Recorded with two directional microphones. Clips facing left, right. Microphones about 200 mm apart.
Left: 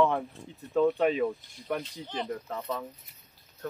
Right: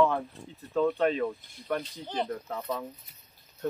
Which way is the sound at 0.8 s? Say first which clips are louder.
Left 1 dB; 10° left (ahead or behind).